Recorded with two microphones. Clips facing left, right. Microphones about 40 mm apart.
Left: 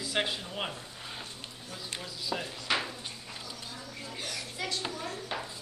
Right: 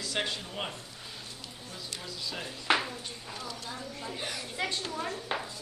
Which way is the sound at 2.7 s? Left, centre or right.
Right.